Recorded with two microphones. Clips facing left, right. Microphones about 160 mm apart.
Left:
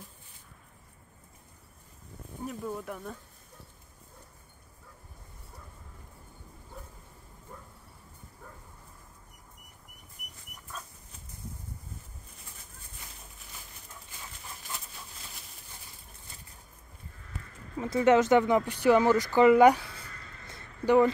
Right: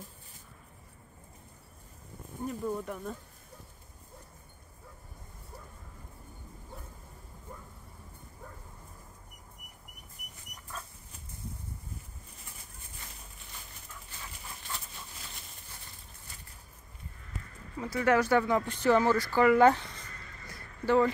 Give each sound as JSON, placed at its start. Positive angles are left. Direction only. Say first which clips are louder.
{"t": 2.4, "sound": "speech", "louder": "right 2 dB", "side_deg": 0}
{"t": 17.7, "sound": "speech", "louder": "left 4 dB", "side_deg": 20}
{"t": 20.4, "sound": "a sound", "louder": "left 3 dB", "side_deg": 20}